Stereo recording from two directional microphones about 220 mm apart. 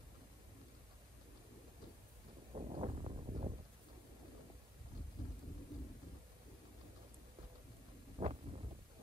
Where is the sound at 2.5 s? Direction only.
25° right (ahead or behind).